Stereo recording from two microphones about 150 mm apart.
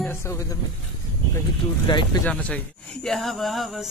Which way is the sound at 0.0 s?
15° left (ahead or behind).